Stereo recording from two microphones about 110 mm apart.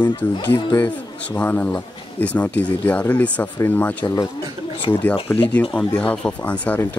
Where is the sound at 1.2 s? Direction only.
15° left (ahead or behind).